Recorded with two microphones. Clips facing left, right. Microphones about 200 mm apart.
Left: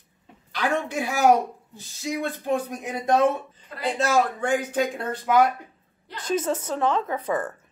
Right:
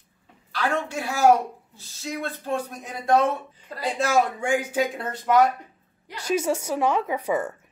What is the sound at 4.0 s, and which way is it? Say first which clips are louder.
Speech: even; 10° right (ahead or behind).